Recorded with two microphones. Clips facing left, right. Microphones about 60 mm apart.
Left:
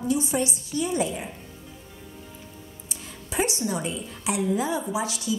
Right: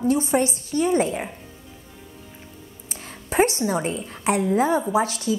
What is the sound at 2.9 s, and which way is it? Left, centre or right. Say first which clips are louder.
A woman's voice: right 6 dB; right.